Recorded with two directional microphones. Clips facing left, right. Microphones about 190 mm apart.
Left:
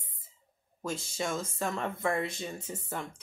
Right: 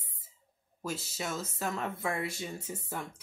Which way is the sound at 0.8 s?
5° right (ahead or behind).